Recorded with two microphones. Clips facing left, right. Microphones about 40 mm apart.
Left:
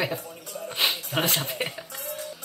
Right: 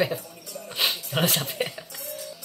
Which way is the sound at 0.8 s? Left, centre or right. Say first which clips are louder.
Even; centre.